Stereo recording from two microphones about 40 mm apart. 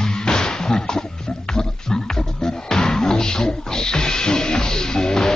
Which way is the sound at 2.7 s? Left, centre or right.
Centre.